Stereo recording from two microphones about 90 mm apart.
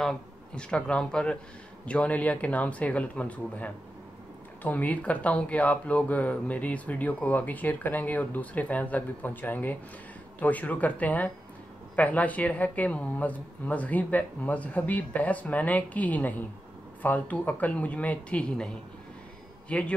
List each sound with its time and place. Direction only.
0.0 s speech: 5° left (ahead or behind)
19.7 s speech: 15° left (ahead or behind)